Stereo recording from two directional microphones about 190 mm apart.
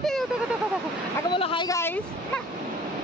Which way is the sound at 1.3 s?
25° left (ahead or behind).